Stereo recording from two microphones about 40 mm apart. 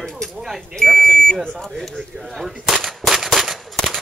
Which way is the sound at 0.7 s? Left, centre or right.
Centre.